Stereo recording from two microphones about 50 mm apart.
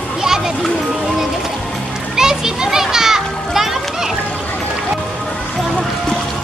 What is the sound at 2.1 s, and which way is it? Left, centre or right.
Music, centre.